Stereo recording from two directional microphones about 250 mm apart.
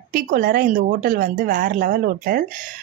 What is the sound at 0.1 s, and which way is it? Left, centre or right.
A woman's voice, right.